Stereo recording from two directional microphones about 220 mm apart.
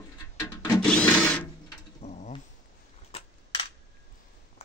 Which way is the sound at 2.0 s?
35° left (ahead or behind).